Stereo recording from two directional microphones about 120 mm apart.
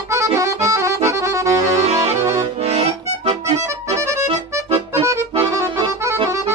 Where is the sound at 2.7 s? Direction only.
55° right (ahead or behind).